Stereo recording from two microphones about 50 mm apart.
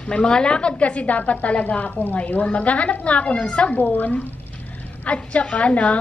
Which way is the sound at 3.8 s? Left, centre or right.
Left.